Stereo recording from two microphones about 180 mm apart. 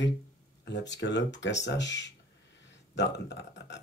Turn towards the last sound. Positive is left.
turn(degrees=75)  # may be behind; listen again after turning